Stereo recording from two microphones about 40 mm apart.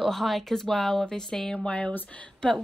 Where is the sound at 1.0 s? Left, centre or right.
Centre.